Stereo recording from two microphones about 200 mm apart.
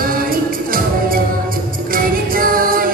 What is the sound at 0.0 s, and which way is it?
Music, 45° right (ahead or behind).